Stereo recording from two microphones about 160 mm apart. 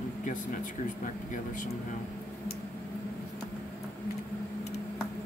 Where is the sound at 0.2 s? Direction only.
55° left (ahead or behind).